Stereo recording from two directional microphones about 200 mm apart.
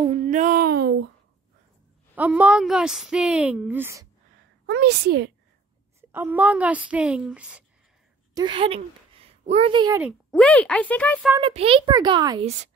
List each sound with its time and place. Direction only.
0.1 s a sound: 40° right (ahead or behind)
2.1 s a woman's voice: 5° right (ahead or behind)
4.6 s a woman's voice: 55° right (ahead or behind)
5.9 s a woman's voice: 10° right (ahead or behind)
8.4 s a woman's voice: 25° right (ahead or behind)
10.3 s speech: 5° left (ahead or behind)
11.4 s a child's voice: 30° right (ahead or behind)